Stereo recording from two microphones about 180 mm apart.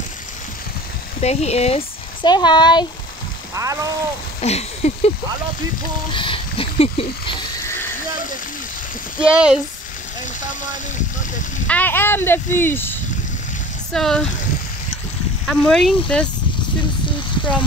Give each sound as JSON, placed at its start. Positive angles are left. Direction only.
{"t": 1.2, "sound": "speech", "side_deg": 35}
{"t": 3.6, "sound": "speech", "side_deg": -15}
{"t": 4.4, "sound": "a sound", "side_deg": 35}
{"t": 6.1, "sound": "speech", "side_deg": 30}
{"t": 7.6, "sound": "a sound", "side_deg": 10}
{"t": 9.2, "sound": "speech", "side_deg": -5}
{"t": 11.6, "sound": "speech", "side_deg": 10}
{"t": 15.4, "sound": "speech", "side_deg": 0}